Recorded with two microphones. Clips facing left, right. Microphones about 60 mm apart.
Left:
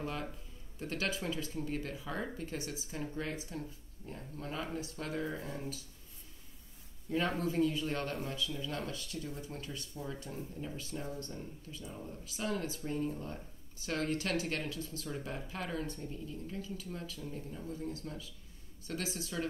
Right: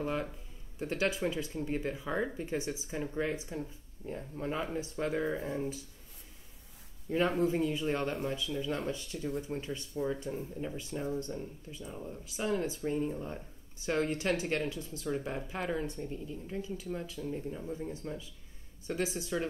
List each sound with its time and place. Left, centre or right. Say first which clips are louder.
0.0 s speech: right 5 dB; centre
7.1 s speech: right 5 dB; centre